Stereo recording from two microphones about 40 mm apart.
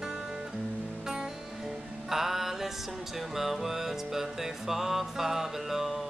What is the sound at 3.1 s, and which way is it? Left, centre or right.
Music, centre.